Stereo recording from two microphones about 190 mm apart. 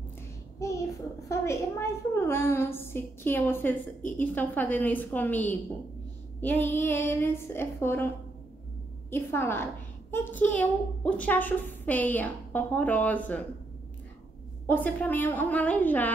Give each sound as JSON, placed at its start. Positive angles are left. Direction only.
{"t": 0.6, "sound": "child singing", "side_deg": 15}
{"t": 1.3, "sound": "a woman's voice", "side_deg": 15}
{"t": 9.1, "sound": "a woman's voice", "side_deg": 10}
{"t": 14.7, "sound": "a woman's voice", "side_deg": 10}